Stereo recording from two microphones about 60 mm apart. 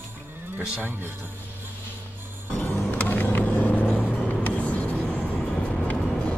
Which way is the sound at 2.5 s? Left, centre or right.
Left.